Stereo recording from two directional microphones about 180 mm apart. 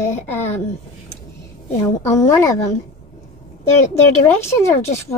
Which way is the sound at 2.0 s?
15° left (ahead or behind).